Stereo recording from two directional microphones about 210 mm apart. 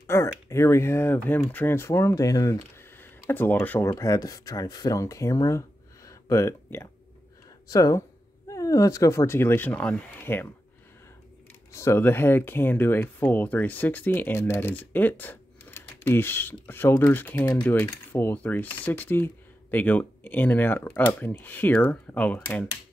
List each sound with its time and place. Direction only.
0.0 s speech: 10° left (ahead or behind)
6.0 s a sound: 15° left (ahead or behind)
7.7 s speech: 15° left (ahead or behind)
11.7 s speech: 15° left (ahead or behind)